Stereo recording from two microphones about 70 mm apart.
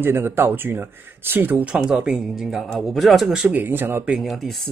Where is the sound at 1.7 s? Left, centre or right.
Centre.